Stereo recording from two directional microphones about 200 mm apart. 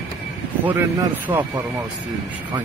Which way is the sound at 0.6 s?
10° right (ahead or behind).